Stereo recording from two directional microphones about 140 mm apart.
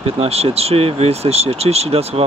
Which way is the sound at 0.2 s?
45° right (ahead or behind).